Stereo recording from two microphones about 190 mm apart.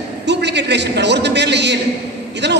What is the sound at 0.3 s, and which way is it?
A man's voice, 65° right (ahead or behind).